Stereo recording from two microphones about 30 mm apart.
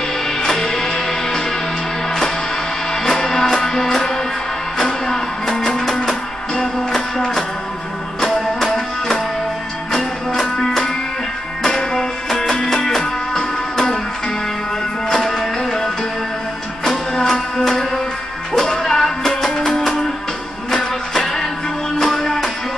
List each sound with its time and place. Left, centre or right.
0.4 s music: centre
2.9 s music: centre
15.0 s music: centre
20.7 s music: centre